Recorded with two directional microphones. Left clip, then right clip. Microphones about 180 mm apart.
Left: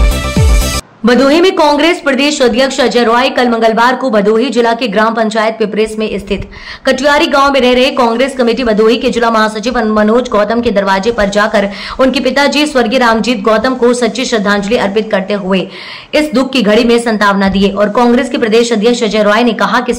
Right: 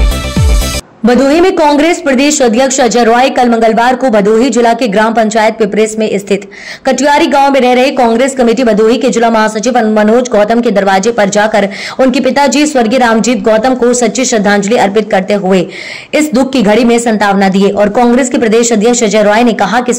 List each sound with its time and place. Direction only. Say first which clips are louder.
1.0 s a woman's voice: right 1 dB; 15° right (ahead or behind)